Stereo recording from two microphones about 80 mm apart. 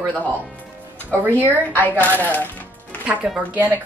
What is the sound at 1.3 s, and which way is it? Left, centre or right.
Speech, left.